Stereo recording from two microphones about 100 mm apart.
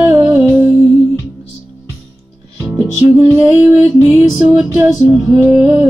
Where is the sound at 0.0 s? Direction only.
20° right (ahead or behind).